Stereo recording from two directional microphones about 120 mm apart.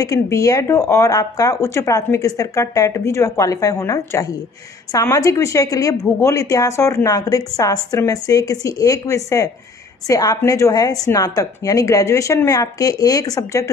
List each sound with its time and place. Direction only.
0.0 s speech: 30° left (ahead or behind)